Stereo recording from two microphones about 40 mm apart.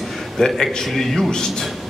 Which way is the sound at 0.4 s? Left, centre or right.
Centre.